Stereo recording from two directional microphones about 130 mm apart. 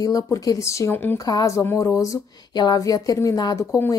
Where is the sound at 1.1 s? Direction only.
30° left (ahead or behind).